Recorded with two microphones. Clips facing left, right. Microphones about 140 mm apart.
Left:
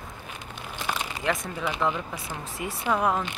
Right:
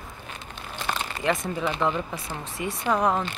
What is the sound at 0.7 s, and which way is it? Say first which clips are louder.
Crumpling: right 1 dB; 10° left (ahead or behind).